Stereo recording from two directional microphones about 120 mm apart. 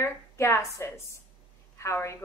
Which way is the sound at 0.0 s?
20° left (ahead or behind).